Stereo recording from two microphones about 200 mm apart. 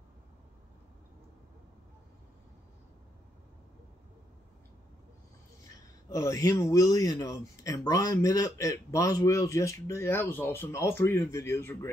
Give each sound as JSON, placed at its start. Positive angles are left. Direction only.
{"t": 6.0, "sound": "speech", "side_deg": 15}